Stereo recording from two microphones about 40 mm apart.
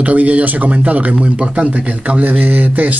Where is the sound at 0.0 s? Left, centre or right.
Right.